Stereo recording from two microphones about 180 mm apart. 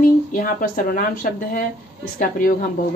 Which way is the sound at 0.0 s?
50° left (ahead or behind).